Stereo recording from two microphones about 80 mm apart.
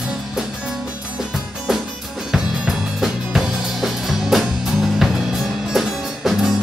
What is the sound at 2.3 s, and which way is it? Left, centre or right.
Music, centre.